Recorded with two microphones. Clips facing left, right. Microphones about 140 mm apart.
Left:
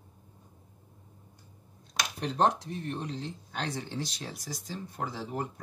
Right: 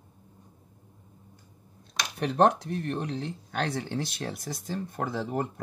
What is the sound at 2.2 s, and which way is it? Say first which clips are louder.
Speech: right 5 dB; 60° right (ahead or behind).